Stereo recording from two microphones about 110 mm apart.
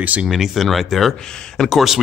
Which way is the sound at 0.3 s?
Centre (ahead or behind).